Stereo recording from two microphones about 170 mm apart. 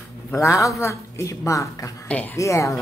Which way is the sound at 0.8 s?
15° left (ahead or behind).